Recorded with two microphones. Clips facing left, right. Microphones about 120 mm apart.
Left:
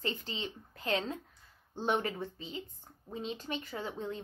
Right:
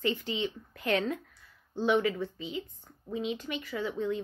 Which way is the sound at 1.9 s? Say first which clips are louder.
Right 5 dB; 40° left (ahead or behind).